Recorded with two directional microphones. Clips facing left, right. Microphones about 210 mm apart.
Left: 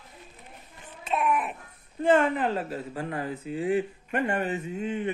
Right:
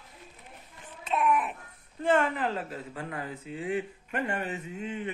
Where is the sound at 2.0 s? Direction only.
20° left (ahead or behind).